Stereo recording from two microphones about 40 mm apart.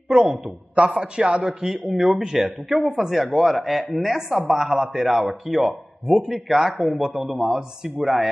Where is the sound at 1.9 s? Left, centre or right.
Centre.